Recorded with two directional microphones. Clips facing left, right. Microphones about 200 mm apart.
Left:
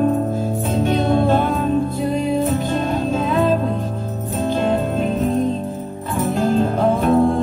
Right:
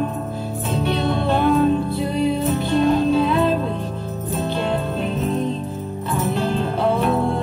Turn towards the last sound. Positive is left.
turn(degrees=45)  # may be behind; listen again after turning